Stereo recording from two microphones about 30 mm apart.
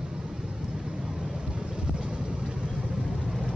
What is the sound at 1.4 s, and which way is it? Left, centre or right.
Vehicle, right.